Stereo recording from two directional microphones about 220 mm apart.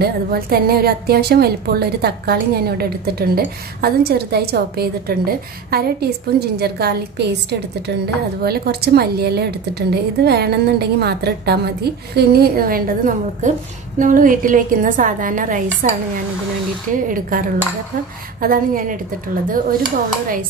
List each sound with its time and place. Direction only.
0.0 s a woman's voice: 45° right (ahead or behind)
8.4 s a woman's voice: 45° right (ahead or behind)
16.9 s a woman's voice: 40° right (ahead or behind)